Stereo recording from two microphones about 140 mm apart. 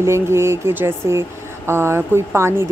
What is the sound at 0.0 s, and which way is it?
Speech, 20° right (ahead or behind).